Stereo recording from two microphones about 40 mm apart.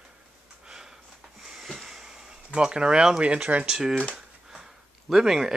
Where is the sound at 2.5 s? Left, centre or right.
Right.